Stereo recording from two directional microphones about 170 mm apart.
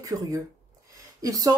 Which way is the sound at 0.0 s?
20° right (ahead or behind).